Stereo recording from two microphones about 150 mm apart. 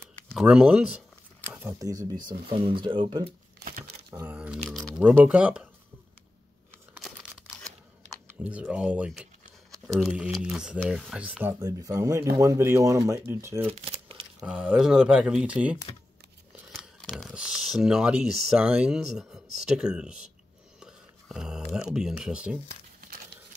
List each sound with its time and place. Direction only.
0.0 s a sound: 5° left (ahead or behind)
0.5 s speech: 5° right (ahead or behind); by 3.3 s 30° right (ahead or behind)
4.1 s a sound: 15° right (ahead or behind)
5.2 s speech: 5° right (ahead or behind)
7.0 s tearing: centre (ahead or behind)
8.5 s speech: 10° right (ahead or behind)
11.6 s speech: 20° right (ahead or behind)
13.7 s crumpling: 35° right (ahead or behind)
14.4 s speech: 5° right (ahead or behind)